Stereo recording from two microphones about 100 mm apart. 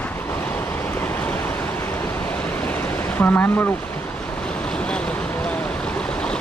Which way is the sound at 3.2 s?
20° left (ahead or behind).